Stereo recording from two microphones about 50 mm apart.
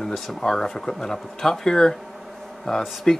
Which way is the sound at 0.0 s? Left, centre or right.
Centre.